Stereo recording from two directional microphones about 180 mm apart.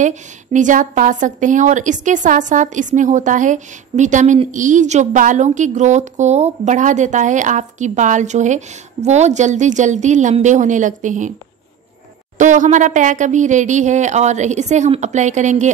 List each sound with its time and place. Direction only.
0.0 s a woman's voice: 40° right (ahead or behind)
12.4 s speech: 45° right (ahead or behind)